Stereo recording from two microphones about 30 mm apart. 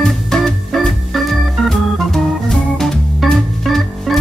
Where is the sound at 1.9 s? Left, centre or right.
Centre.